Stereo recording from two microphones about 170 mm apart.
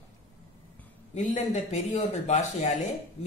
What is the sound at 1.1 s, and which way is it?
Speech, 40° left (ahead or behind).